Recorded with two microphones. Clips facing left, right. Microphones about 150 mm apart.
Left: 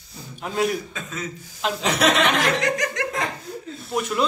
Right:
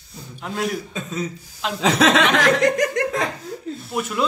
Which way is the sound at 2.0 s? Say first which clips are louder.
Right 3 dB; 90° right.